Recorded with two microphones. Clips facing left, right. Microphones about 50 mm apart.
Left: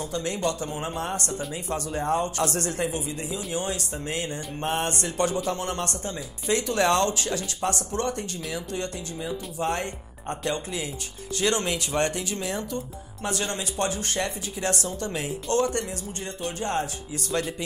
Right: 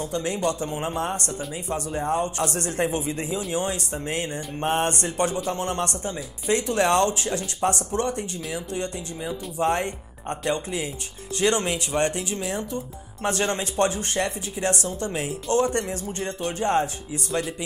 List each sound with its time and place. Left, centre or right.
0.0 s speech: right
13.2 s speech: right
15.9 s speech: right
17.3 s speech: centre